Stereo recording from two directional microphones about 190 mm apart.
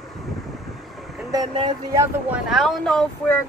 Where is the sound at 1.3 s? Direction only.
25° right (ahead or behind).